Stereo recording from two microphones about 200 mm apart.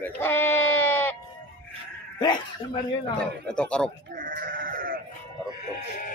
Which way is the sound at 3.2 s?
5° left (ahead or behind).